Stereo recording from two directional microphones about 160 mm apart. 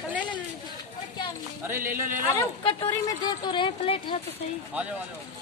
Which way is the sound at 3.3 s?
30° left (ahead or behind).